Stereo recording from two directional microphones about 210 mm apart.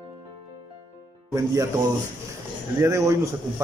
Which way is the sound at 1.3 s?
15° right (ahead or behind).